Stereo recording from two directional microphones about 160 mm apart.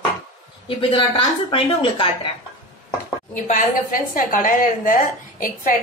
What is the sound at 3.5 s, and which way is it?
Speech, 55° left (ahead or behind).